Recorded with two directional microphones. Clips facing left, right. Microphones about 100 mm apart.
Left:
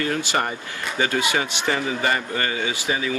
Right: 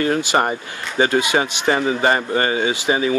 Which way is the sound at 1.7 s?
35° right (ahead or behind).